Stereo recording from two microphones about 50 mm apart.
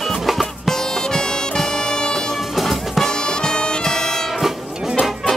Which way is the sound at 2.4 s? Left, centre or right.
Centre.